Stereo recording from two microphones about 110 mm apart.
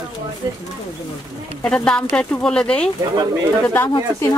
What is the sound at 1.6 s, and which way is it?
Speech, 10° left (ahead or behind).